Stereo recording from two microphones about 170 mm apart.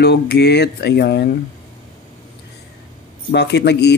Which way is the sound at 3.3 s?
85° left.